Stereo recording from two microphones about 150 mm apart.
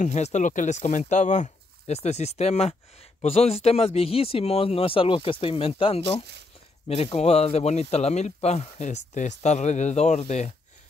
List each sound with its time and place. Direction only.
0.0 s speech: 50° left (ahead or behind)